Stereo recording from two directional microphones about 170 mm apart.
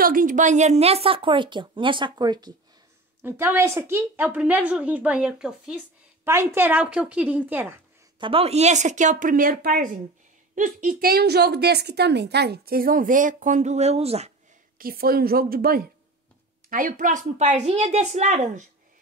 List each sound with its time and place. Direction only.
0.0 s a woman's voice: 55° right (ahead or behind); by 2.5 s 25° right (ahead or behind)
3.2 s a woman's voice: 15° right (ahead or behind)
6.2 s a woman's voice: 15° right (ahead or behind)
8.2 s a woman's voice: 35° right (ahead or behind)
14.8 s a woman's voice: 60° right (ahead or behind); by 18.6 s 45° right (ahead or behind)